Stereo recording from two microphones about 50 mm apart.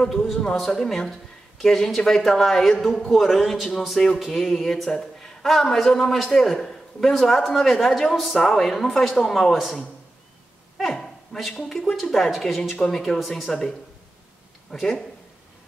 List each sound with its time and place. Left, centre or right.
0.0 s a man's voice: centre
10.8 s a man's voice: centre